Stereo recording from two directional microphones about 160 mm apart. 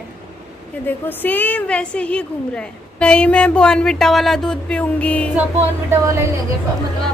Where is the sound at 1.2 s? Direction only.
10° left (ahead or behind).